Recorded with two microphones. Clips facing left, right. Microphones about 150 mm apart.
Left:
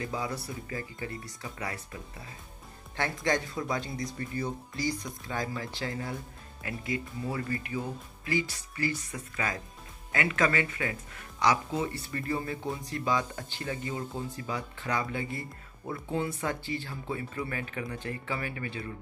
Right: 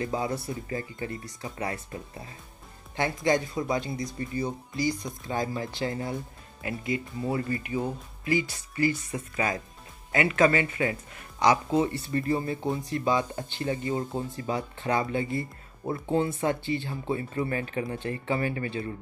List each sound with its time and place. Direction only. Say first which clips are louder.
0.0 s speech: right 5 dB; 30° right (ahead or behind)
3.0 s speech: right 4 dB; 15° right (ahead or behind); by 18.9 s 30° right (ahead or behind)